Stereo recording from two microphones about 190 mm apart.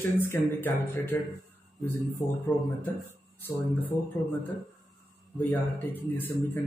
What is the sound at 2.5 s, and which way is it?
Speech, 10° left (ahead or behind).